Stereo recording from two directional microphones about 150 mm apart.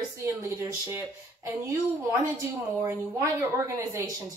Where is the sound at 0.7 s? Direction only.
20° right (ahead or behind).